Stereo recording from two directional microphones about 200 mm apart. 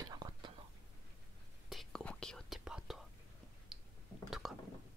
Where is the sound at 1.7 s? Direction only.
Centre (ahead or behind).